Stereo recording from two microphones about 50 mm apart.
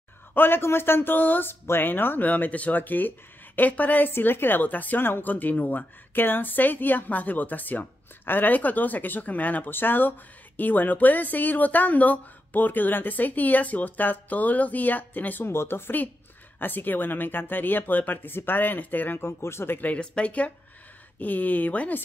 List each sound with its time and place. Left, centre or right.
0.3 s speech: left
9.7 s speech: left
15.4 s speech: left
16.5 s speech: left
19.2 s speech: left
20.0 s speech: left